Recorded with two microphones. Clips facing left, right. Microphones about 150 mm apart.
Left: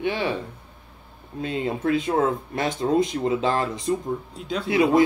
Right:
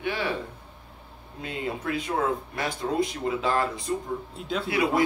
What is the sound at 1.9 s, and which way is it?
Speech, 25° left (ahead or behind).